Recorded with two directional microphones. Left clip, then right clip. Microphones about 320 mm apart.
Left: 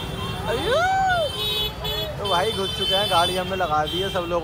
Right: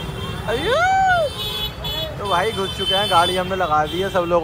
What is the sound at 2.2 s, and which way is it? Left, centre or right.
Speech, centre.